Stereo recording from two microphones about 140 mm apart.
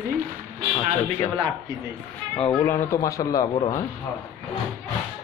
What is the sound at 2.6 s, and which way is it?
Speech, 20° left (ahead or behind).